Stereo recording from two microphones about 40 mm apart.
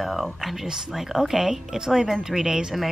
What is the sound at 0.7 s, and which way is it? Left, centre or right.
Speech, centre.